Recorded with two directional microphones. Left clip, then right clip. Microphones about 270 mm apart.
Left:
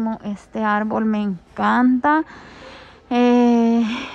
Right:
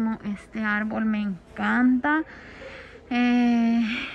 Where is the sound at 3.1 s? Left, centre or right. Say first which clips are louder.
Left 8 dB; centre.